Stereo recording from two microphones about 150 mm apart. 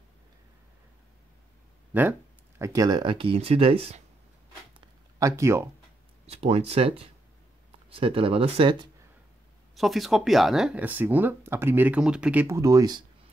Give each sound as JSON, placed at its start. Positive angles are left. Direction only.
{"t": 2.6, "sound": "speech", "side_deg": -25}
{"t": 5.2, "sound": "speech", "side_deg": -20}
{"t": 6.2, "sound": "speech", "side_deg": -45}
{"t": 9.8, "sound": "speech", "side_deg": 0}